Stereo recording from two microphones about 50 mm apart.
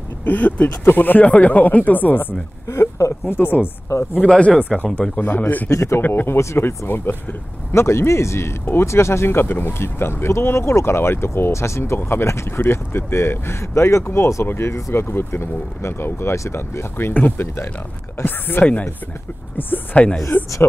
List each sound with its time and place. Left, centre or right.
0.2 s speech: left
1.2 s speech: left
2.7 s speech: left
4.2 s speech: centre
5.1 s speech: left
5.7 s speech: left
5.9 s speech: left
7.7 s speech: left
18.2 s speech: left